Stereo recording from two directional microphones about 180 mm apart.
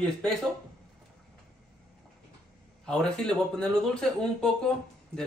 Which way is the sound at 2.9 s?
5° left (ahead or behind).